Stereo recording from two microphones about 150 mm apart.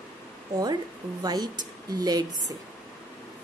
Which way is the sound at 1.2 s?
25° right (ahead or behind).